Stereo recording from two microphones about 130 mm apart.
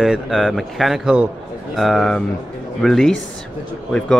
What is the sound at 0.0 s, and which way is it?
Speech, centre (ahead or behind).